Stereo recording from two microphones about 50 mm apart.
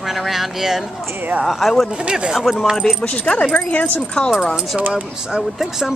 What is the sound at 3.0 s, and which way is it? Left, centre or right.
Speech, left.